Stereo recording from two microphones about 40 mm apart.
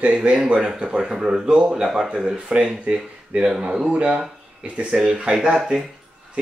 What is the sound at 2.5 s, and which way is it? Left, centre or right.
Speech, right.